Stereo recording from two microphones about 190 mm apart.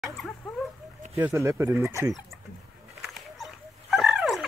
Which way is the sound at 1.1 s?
15° right (ahead or behind).